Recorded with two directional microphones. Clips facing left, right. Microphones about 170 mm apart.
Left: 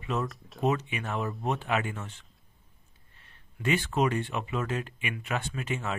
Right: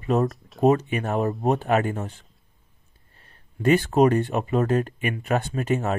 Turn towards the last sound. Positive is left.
turn(degrees=-40)  # may be behind; listen again after turning